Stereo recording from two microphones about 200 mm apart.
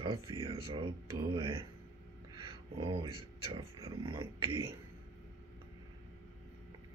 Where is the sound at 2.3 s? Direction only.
25° right (ahead or behind).